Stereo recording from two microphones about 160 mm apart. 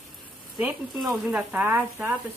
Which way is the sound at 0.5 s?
5° right (ahead or behind).